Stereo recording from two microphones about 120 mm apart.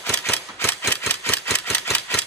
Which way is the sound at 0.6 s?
20° left (ahead or behind).